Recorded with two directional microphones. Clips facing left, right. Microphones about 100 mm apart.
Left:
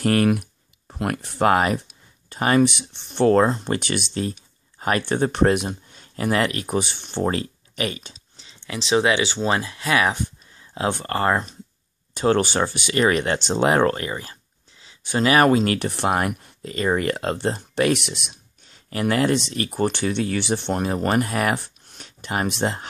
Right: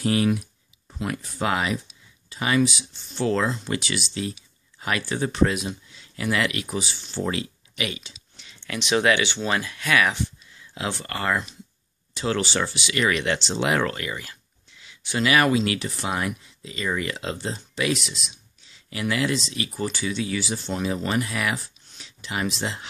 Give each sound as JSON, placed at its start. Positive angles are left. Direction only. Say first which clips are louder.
{"t": 0.0, "sound": "speech", "louder": "left 3 dB", "side_deg": 55}
{"t": 5.0, "sound": "speech", "louder": "left 3 dB", "side_deg": 55}
{"t": 6.8, "sound": "speech", "louder": "left 5 dB", "side_deg": 55}
{"t": 8.6, "sound": "speech", "louder": "left 2 dB", "side_deg": 25}
{"t": 12.1, "sound": "speech", "louder": "left 6 dB", "side_deg": 50}
{"t": 13.7, "sound": "speech", "louder": "left 5 dB", "side_deg": 35}